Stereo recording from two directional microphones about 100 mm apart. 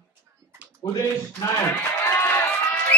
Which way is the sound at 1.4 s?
25° left (ahead or behind).